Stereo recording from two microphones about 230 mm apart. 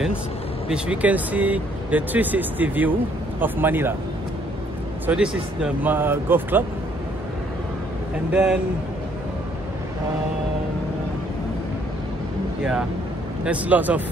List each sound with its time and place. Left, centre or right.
0.7 s speech: centre
5.0 s speech: centre
8.3 s speech: centre
13.4 s speech: centre